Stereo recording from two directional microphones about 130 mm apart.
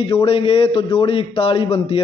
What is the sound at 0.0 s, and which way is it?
A man's voice, 45° left (ahead or behind).